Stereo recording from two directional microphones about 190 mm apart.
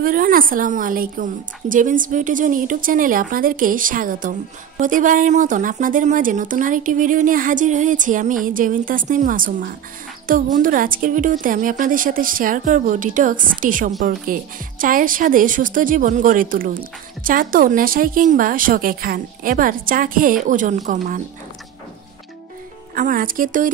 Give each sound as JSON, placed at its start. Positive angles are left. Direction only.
{"t": 0.0, "sound": "a woman's voice", "side_deg": -50}
{"t": 22.9, "sound": "a woman's voice", "side_deg": -45}